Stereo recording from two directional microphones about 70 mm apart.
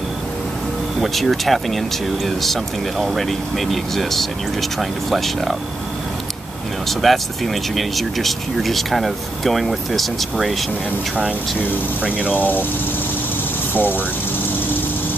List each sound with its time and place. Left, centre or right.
1.0 s speech: centre
6.9 s speech: centre
12.3 s speech: left
13.7 s speech: left